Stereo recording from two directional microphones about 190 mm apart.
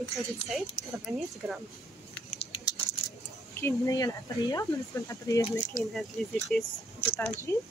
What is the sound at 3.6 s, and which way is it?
Speech, 15° left (ahead or behind).